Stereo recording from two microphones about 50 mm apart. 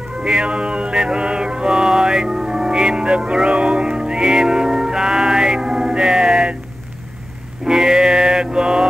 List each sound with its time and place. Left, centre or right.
0.2 s music: right
7.6 s music: centre